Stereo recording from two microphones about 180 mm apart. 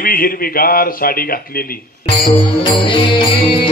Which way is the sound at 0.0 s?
55° left (ahead or behind).